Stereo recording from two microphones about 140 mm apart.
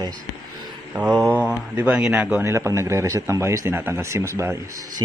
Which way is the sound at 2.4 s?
20° right (ahead or behind).